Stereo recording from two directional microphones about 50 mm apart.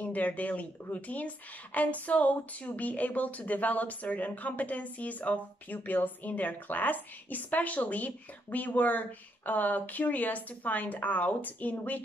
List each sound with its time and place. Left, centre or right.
0.0 s speech: left